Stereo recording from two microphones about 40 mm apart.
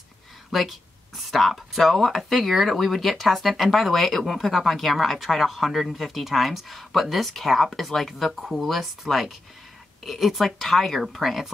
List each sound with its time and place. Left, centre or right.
0.5 s speech: centre